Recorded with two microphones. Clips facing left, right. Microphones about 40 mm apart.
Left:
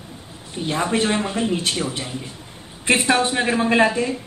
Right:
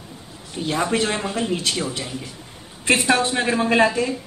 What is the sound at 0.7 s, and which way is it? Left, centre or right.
Speech, centre.